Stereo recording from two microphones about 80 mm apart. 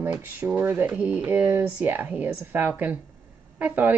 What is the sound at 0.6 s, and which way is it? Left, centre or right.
Speech, right.